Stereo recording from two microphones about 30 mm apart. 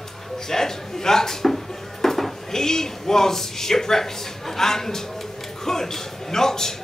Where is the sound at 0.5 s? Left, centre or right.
Centre.